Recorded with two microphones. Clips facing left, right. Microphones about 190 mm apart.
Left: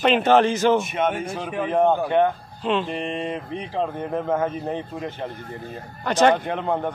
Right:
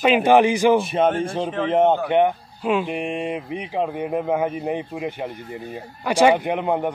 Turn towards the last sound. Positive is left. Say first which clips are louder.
# right 3 dB
turn(degrees=-15)  # may be behind; listen again after turning